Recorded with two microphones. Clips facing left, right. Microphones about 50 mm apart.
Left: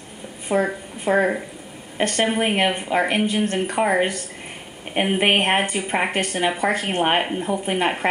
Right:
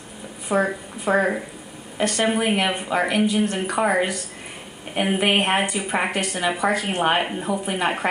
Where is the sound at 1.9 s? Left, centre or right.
Left.